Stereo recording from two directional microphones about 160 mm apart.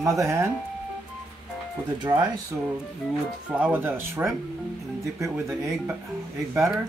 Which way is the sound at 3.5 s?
10° right (ahead or behind).